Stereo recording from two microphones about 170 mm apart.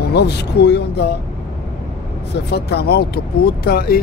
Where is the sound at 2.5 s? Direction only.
75° left (ahead or behind).